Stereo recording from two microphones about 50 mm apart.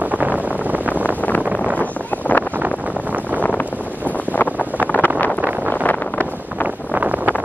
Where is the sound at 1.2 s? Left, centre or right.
Left.